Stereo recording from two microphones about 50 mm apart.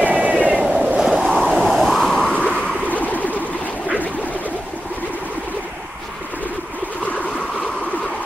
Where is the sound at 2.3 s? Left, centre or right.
Left.